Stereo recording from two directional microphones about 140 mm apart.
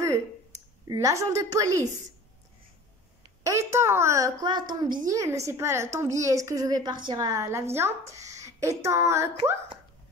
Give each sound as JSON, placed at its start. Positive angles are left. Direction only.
{"t": 0.8, "sound": "a woman's voice", "side_deg": -25}
{"t": 3.4, "sound": "a woman's voice", "side_deg": -20}